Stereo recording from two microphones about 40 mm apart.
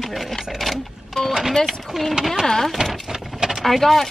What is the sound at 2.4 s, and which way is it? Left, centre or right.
Speech, centre.